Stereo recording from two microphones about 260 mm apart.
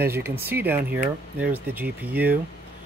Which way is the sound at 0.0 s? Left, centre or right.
Centre.